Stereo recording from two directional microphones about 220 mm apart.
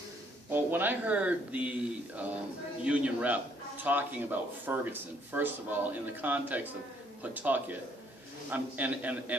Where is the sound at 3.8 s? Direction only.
10° right (ahead or behind).